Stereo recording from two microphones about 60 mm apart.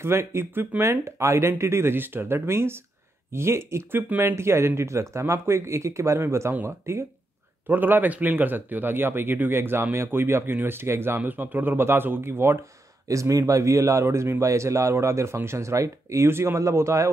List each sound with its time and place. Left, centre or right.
0.0 s speech: right
7.6 s speech: right
13.1 s speech: right
14.0 s speech: right
16.3 s speech: right
16.5 s speech: right